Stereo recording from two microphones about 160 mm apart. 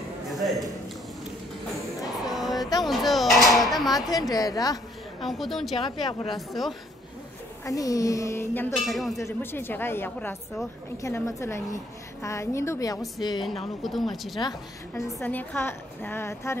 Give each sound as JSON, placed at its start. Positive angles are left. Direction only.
{"t": 0.3, "sound": "a sound", "side_deg": 0}
{"t": 2.2, "sound": "a sound", "side_deg": 0}
{"t": 4.1, "sound": "a woman's voice", "side_deg": 25}
{"t": 5.2, "sound": "a woman's voice", "side_deg": 0}
{"t": 7.6, "sound": "a woman's voice", "side_deg": 20}
{"t": 8.7, "sound": "a woman's voice", "side_deg": 0}
{"t": 9.2, "sound": "a woman's voice", "side_deg": 15}
{"t": 13.8, "sound": "a woman's voice", "side_deg": 0}
{"t": 15.2, "sound": "a woman's voice", "side_deg": 10}